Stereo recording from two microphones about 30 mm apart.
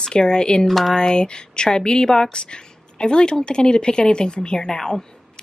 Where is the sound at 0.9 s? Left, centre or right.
Left.